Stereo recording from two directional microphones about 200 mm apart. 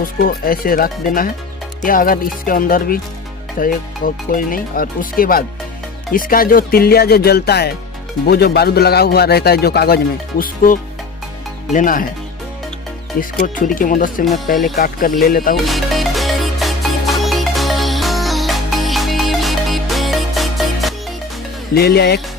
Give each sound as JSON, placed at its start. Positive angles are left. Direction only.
{"t": 0.0, "sound": "a man's voice", "side_deg": 45}
{"t": 13.2, "sound": "a man's voice", "side_deg": 40}
{"t": 15.5, "sound": "music", "side_deg": 0}
{"t": 21.7, "sound": "a man's voice", "side_deg": 55}